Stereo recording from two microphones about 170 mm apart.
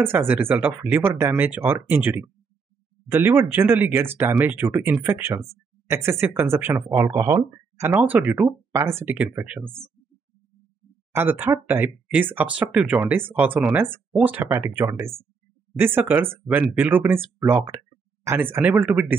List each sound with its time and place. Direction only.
0.0 s speech: 15° right (ahead or behind)
11.1 s speech: 10° right (ahead or behind)